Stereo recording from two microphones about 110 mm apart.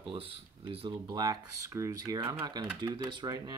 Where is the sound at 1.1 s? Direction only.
30° right (ahead or behind).